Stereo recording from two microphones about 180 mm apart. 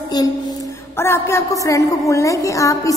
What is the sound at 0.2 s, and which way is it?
A child's voice, 20° left (ahead or behind).